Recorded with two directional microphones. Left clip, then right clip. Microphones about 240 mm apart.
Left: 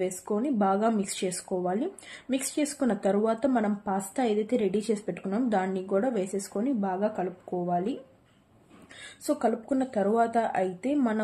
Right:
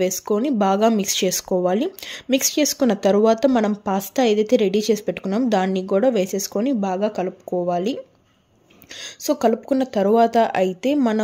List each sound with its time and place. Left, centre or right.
0.0 s speech: right
9.2 s speech: right